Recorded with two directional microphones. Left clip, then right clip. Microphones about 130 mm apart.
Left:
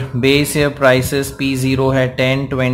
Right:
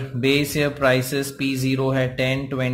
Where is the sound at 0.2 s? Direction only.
20° left (ahead or behind).